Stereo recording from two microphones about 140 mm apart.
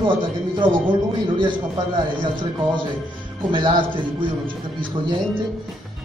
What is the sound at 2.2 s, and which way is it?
Speech, 35° right (ahead or behind).